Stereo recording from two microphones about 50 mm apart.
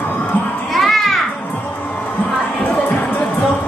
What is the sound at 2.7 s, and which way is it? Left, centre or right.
Music, left.